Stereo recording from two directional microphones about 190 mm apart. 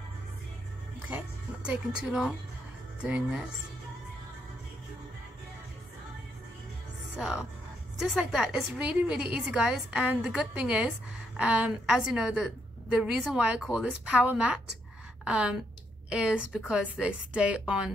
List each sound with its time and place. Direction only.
1.0 s a woman's voice: 10° right (ahead or behind)
8.0 s a woman's voice: 5° right (ahead or behind)